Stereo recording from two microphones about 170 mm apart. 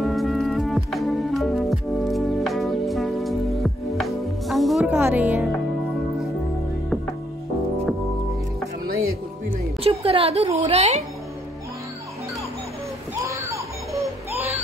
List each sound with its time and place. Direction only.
0.0 s music: centre (ahead or behind)
9.8 s a woman's voice: 35° right (ahead or behind)
13.1 s music: 20° right (ahead or behind)